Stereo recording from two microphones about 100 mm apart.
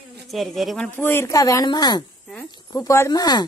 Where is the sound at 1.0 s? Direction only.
25° left (ahead or behind).